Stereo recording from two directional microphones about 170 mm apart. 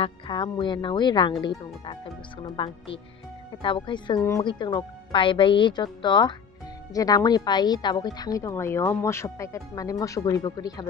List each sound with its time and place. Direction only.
0.0 s speech: 25° left (ahead or behind)
2.4 s speech: 30° left (ahead or behind)